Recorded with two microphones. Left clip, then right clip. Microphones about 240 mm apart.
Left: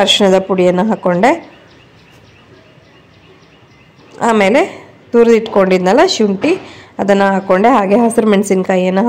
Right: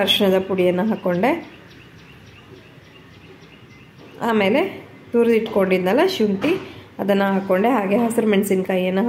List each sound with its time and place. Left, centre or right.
0.0 s a woman's voice: left
4.2 s a woman's voice: left